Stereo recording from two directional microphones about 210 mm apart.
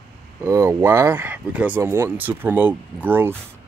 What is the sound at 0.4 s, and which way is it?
Speech, 10° right (ahead or behind).